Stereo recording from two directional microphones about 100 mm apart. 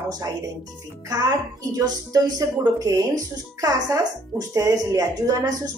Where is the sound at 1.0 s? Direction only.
40° right (ahead or behind).